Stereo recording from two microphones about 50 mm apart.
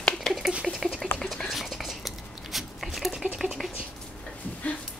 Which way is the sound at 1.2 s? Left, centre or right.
Centre.